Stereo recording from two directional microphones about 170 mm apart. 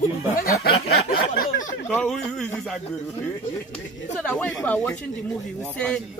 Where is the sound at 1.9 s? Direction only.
5° left (ahead or behind).